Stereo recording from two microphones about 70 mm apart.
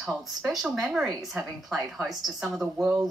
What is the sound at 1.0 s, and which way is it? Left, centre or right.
Speech, centre.